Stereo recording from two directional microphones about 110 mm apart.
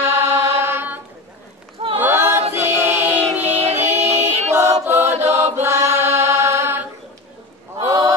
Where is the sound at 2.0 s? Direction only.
20° right (ahead or behind).